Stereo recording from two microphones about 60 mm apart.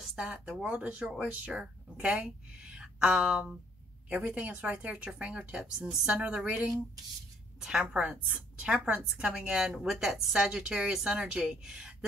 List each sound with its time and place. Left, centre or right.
0.0 s a sound: centre
0.3 s speech: centre
4.1 s speech: right
7.8 s speech: right
9.5 s speech: centre